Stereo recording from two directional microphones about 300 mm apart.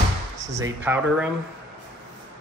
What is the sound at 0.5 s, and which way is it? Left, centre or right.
Speech, centre.